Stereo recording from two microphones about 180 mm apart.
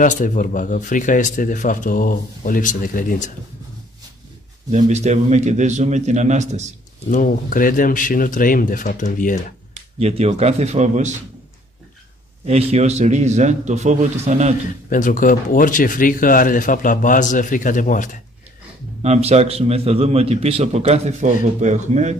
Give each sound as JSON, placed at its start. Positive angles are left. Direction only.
{"t": 0.0, "sound": "speech", "side_deg": 45}
{"t": 4.6, "sound": "a man's voice", "side_deg": -40}
{"t": 7.1, "sound": "speech", "side_deg": 50}
{"t": 9.9, "sound": "a man's voice", "side_deg": -35}
{"t": 12.4, "sound": "a man's voice", "side_deg": -35}
{"t": 14.9, "sound": "speech", "side_deg": 45}
{"t": 19.0, "sound": "a man's voice", "side_deg": -35}